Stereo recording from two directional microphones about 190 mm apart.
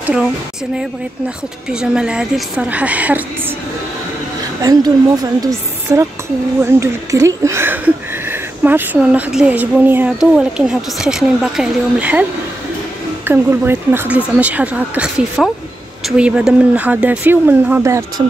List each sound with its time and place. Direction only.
0.0 s a woman's voice: 5° right (ahead or behind)
1.7 s speech: 5° right (ahead or behind)
4.6 s a woman's voice: 20° right (ahead or behind)